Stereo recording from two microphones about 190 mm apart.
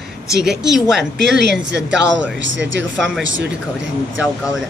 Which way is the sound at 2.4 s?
75° right (ahead or behind).